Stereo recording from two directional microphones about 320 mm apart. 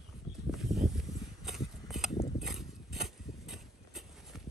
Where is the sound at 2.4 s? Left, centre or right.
Centre.